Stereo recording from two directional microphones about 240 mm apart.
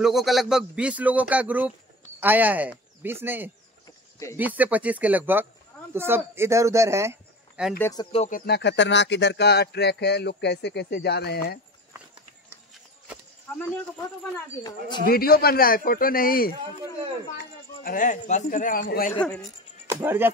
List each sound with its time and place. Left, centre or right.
0.0 s a man's voice: centre
7.8 s speech: centre
8.3 s speech: left
14.6 s speech: centre
15.0 s speech: left
19.1 s a man's voice: centre
19.9 s speech: centre